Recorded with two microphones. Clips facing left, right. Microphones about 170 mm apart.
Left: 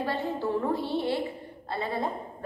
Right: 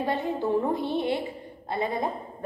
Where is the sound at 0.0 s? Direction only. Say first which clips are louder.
Right 2 dB; 20° right (ahead or behind).